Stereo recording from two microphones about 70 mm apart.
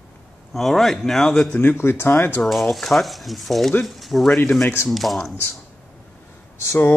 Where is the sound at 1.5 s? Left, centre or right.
Left.